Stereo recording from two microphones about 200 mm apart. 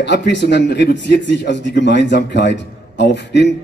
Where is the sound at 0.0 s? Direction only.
60° left (ahead or behind).